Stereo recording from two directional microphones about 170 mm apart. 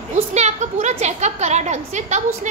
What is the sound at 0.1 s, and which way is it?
A woman's voice, 40° right (ahead or behind).